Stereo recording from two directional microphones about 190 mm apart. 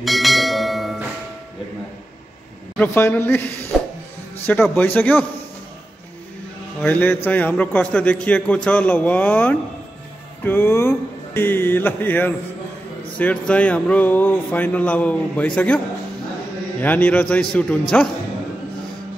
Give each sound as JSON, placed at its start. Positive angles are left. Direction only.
{"t": 0.0, "sound": "bell", "side_deg": 0}
{"t": 2.8, "sound": "a man's voice", "side_deg": 10}
{"t": 6.8, "sound": "a man's voice", "side_deg": 10}
{"t": 16.8, "sound": "a man's voice", "side_deg": 10}